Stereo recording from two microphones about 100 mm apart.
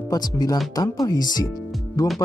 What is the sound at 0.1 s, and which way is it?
Speech, 40° left (ahead or behind).